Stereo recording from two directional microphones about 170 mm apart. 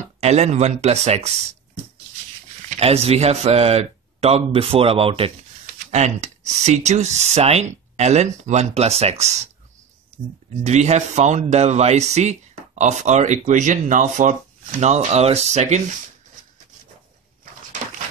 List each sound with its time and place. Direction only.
0.2 s speech: 40° right (ahead or behind)
2.7 s speech: 40° right (ahead or behind)
10.6 s speech: 40° right (ahead or behind)